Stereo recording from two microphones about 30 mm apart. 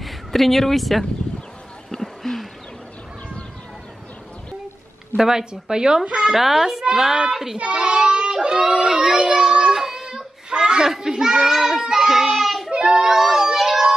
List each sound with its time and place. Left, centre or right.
0.0 s speech: centre
1.9 s a sound: centre
5.1 s speech: centre
5.4 s speech: right
6.0 s speech: right
6.3 s a child's voice: centre
7.5 s child singing: right
8.9 s speech: right
9.4 s child singing: right
9.8 s child singing: centre
10.0 s a sound: right
11.0 s child singing: centre
12.7 s child singing: right
13.0 s a sound: centre